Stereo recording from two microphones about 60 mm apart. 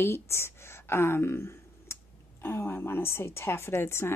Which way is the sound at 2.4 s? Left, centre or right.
Left.